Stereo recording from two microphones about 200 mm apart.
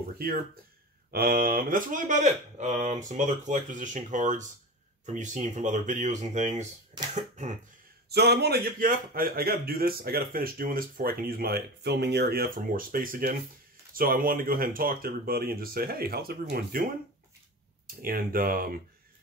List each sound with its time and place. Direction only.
1.1 s speech: 45° right (ahead or behind)
8.1 s a man's voice: 55° right (ahead or behind)
18.0 s a man's voice: 45° right (ahead or behind)